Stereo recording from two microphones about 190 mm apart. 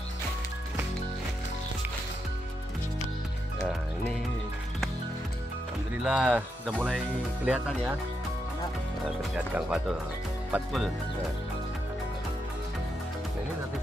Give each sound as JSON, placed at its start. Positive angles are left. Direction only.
{"t": 6.0, "sound": "speech", "side_deg": -5}
{"t": 9.0, "sound": "speech", "side_deg": -5}